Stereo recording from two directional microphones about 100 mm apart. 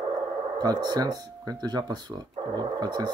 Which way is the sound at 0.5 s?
40° right (ahead or behind).